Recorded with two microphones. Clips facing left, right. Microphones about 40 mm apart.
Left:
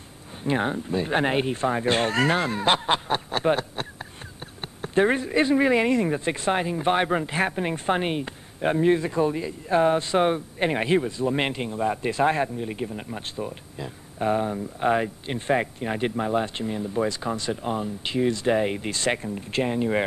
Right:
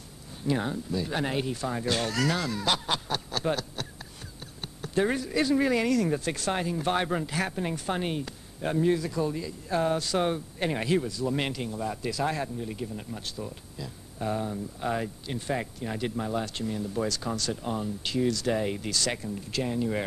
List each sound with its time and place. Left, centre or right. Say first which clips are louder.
0.4 s speech: left 4 dB; left